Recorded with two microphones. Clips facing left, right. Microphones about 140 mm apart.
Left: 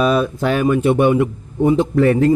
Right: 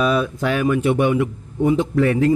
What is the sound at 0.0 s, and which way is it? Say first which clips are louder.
Speech: left 3 dB; 35° left (ahead or behind).